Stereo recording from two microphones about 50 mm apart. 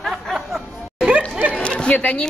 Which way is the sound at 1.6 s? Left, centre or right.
Left.